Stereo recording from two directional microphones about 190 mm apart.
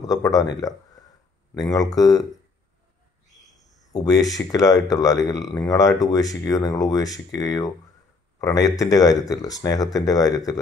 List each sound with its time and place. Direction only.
0.0 s speech: 20° left (ahead or behind)
3.6 s speech: 20° left (ahead or behind)